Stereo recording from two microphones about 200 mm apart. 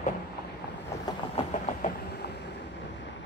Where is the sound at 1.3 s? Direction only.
35° left (ahead or behind).